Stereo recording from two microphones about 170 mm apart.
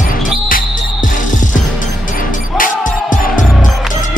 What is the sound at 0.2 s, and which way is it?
Music, 55° left (ahead or behind).